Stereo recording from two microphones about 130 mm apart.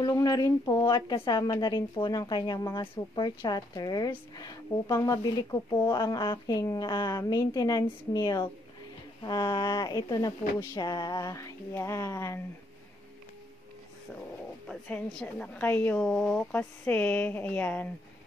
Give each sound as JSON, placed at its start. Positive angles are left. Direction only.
{"t": 0.0, "sound": "a woman's voice", "side_deg": 30}
{"t": 14.7, "sound": "a woman's voice", "side_deg": 5}